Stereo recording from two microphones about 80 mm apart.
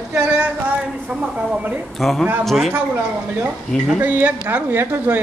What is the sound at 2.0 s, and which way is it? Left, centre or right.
Speech, centre.